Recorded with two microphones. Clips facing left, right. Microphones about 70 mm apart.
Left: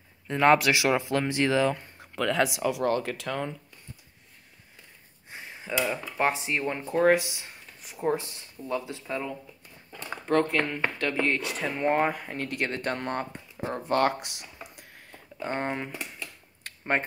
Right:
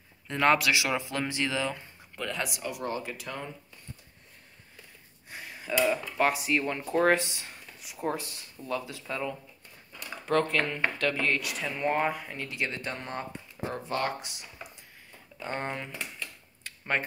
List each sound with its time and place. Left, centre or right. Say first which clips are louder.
0.3 s speech: left 4 dB; left
0.6 s speech: left 4 dB; left
2.0 s speech: left 8 dB; left
5.3 s speech: right 1 dB; left
12.1 s speech: left 3 dB; left
13.6 s speech: left 3 dB; left
14.0 s typing: left 6 dB; left
15.3 s speech: left 4 dB; left
15.9 s speech: left 1 dB; centre
16.6 s a sound: left 1 dB; left